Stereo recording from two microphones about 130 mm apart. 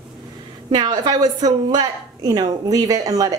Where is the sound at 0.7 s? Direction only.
35° right (ahead or behind).